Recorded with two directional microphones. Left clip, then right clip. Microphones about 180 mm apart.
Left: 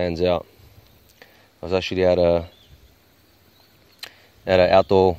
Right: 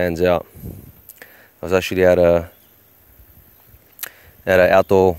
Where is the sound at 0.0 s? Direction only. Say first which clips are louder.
Right 4 dB; 15° right (ahead or behind).